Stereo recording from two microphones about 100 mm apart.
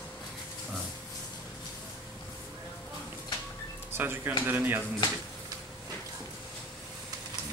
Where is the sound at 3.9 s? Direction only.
25° right (ahead or behind).